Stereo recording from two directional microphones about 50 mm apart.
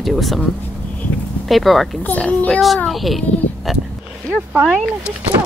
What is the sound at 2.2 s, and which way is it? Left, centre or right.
Speech, left.